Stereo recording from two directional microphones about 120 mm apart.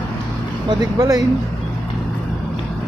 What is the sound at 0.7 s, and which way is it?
Speech, 35° right (ahead or behind).